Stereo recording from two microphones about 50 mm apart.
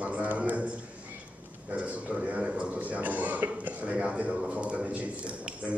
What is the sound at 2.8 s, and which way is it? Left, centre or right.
A man's voice, right.